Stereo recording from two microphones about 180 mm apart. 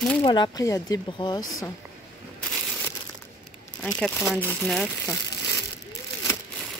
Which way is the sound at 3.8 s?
10° left (ahead or behind).